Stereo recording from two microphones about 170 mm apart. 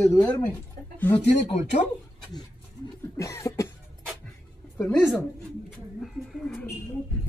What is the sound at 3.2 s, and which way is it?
Cough, 20° left (ahead or behind).